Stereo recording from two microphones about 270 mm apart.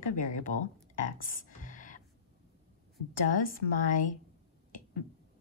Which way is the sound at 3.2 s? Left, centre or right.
Left.